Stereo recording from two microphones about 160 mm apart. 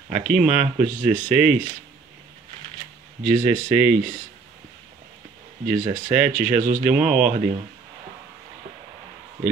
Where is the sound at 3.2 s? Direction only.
50° right (ahead or behind).